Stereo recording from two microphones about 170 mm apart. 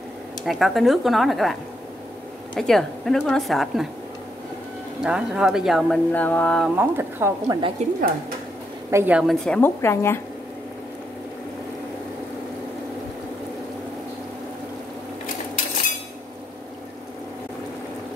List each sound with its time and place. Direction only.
0.4 s speech: centre (ahead or behind)
5.0 s speech: 5° right (ahead or behind)
6.1 s a woman's voice: 10° left (ahead or behind)
6.7 s a woman's voice: 15° right (ahead or behind)
7.8 s speech: 40° right (ahead or behind)
8.9 s speech: 10° right (ahead or behind)
9.6 s a woman's voice: 15° left (ahead or behind)